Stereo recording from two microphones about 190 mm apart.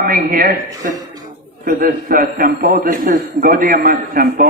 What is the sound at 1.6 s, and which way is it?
A man's voice, 45° right (ahead or behind).